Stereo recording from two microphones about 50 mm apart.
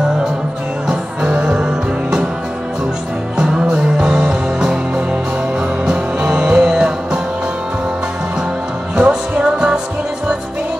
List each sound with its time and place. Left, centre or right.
0.8 s music: centre
3.3 s music: centre
3.7 s music: right
5.9 s music: centre
8.9 s music: right